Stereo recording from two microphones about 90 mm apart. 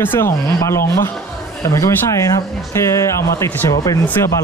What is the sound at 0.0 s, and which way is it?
Speech, 25° left (ahead or behind).